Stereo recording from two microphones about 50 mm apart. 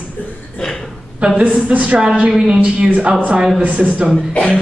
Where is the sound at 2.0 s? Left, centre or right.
Centre.